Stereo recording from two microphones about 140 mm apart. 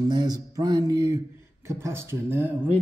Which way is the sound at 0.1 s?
30° right (ahead or behind).